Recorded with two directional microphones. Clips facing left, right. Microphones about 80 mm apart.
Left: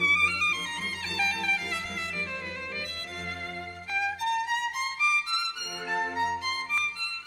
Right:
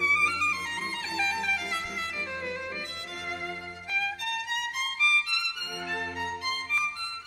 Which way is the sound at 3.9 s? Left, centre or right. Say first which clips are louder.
Left 4 dB; left.